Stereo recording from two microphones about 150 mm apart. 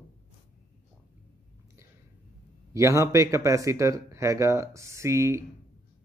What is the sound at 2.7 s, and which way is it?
Speech, 20° right (ahead or behind).